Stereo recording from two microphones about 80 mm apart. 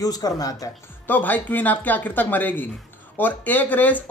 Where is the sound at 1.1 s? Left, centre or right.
Left.